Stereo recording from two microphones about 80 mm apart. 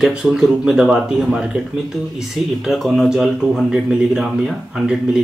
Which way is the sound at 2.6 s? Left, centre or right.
Centre.